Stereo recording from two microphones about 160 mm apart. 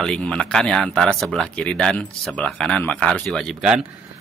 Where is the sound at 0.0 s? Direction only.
5° left (ahead or behind).